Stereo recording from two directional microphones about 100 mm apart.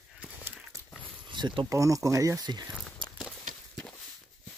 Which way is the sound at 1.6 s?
30° right (ahead or behind).